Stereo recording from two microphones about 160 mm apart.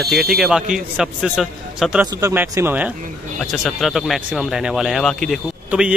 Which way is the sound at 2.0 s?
20° right (ahead or behind).